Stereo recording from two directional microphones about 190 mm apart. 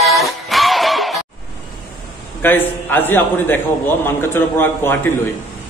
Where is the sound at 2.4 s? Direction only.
10° left (ahead or behind).